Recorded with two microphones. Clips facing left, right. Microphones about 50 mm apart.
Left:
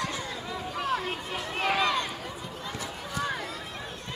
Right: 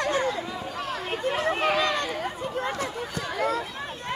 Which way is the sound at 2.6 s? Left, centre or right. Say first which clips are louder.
Right 6 dB; right.